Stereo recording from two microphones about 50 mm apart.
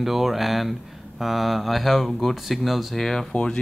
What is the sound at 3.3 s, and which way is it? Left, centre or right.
Speech, centre.